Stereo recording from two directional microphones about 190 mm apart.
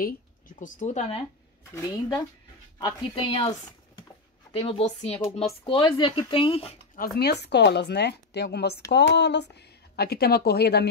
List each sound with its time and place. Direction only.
0.0 s speech: 45° left (ahead or behind)
1.7 s speech: 20° left (ahead or behind)
7.0 s a woman's voice: 60° left (ahead or behind)